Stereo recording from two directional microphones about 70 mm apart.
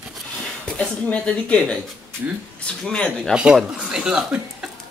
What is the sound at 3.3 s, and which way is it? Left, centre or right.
Speech, centre.